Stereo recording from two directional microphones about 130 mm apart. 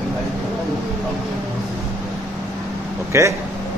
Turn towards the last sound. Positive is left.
turn(degrees=-20)  # may be behind; listen again after turning